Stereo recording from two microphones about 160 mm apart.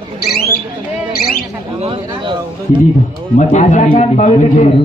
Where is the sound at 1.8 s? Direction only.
30° right (ahead or behind).